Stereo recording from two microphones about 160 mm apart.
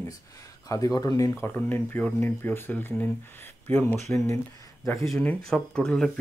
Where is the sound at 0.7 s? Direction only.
20° left (ahead or behind).